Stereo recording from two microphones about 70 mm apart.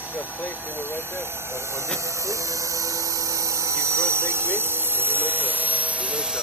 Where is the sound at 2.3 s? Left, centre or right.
Right.